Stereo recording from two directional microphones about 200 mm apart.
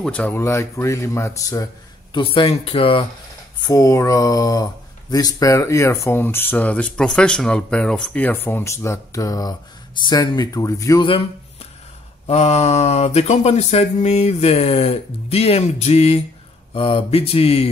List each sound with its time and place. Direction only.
0.0 s speech: 10° left (ahead or behind)
2.1 s speech: 25° left (ahead or behind)
3.6 s speech: 15° left (ahead or behind)
12.3 s a sound: 30° left (ahead or behind)
16.7 s speech: 25° left (ahead or behind)